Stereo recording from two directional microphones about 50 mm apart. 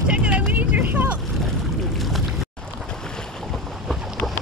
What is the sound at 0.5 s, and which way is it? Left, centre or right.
Vehicle, right.